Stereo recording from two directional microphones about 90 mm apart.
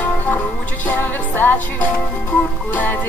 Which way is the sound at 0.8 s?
20° left (ahead or behind).